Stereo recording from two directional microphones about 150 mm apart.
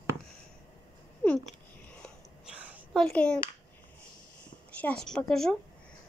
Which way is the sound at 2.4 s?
5° right (ahead or behind).